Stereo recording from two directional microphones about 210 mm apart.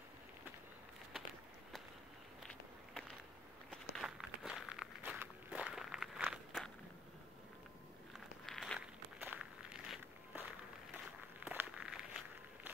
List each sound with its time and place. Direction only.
2.4 s walk: centre (ahead or behind)
8.5 s walk: centre (ahead or behind)